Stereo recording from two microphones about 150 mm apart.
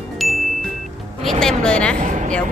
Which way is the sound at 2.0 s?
55° right (ahead or behind).